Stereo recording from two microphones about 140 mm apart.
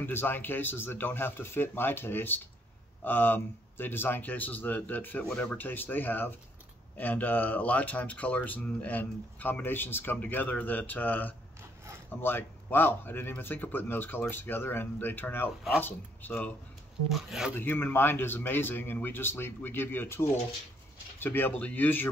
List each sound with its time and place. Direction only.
0.0 s speech: 15° left (ahead or behind)
17.1 s speech: centre (ahead or behind)
17.6 s speech: 15° left (ahead or behind)